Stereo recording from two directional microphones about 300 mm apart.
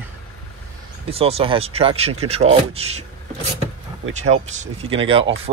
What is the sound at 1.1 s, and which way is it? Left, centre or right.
Speech, centre.